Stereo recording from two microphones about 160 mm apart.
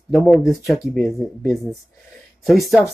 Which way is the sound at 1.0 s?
20° left (ahead or behind).